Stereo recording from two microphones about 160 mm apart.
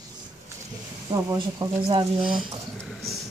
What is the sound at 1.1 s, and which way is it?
Speech, 25° right (ahead or behind).